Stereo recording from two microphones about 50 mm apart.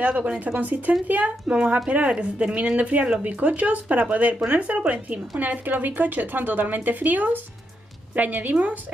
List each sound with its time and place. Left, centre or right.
0.0 s a woman's voice: right